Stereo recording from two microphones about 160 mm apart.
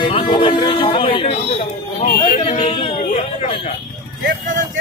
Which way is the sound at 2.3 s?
45° left (ahead or behind).